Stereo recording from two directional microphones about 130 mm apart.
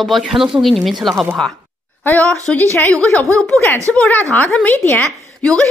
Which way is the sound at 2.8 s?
10° left (ahead or behind).